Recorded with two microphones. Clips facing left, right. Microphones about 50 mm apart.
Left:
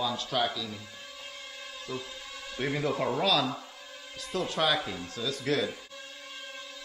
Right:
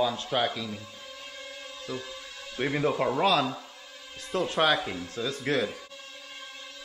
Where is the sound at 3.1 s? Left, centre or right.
Right.